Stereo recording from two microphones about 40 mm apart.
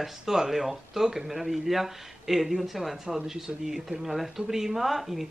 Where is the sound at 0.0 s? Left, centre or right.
Centre.